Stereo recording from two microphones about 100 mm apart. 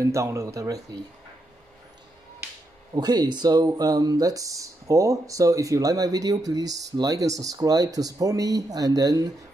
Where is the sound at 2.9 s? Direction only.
45° right (ahead or behind).